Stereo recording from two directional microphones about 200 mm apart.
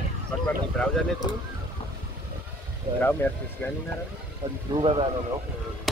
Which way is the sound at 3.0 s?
10° left (ahead or behind).